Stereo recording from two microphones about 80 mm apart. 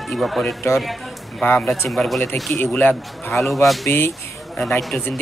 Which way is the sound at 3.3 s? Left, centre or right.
Centre.